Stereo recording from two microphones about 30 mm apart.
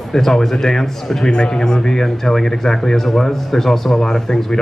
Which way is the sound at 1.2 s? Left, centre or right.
Left.